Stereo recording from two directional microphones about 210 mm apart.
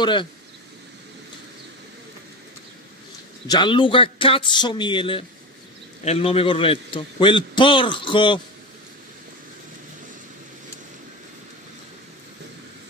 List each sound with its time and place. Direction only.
0.0 s a man's voice: 20° left (ahead or behind)
3.4 s a man's voice: 20° left (ahead or behind)